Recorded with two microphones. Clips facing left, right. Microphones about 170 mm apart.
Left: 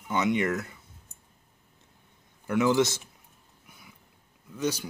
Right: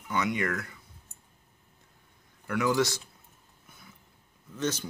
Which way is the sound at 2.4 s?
20° left (ahead or behind).